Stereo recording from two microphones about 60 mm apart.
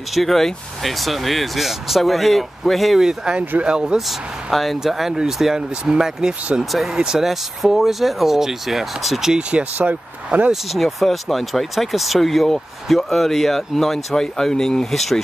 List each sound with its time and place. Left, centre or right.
0.1 s speech: centre
4.5 s speech: centre
6.6 s speech: centre
9.3 s speech: centre
10.5 s speech: centre